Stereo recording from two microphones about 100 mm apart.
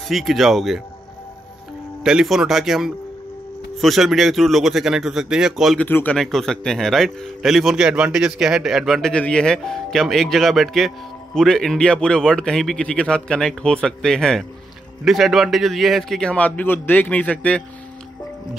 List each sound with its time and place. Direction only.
0.1 s speech: centre (ahead or behind)
2.0 s speech: 5° right (ahead or behind)
5.8 s speech: 15° left (ahead or behind)
6.1 s speech: 5° left (ahead or behind)
9.1 s speech: 10° left (ahead or behind)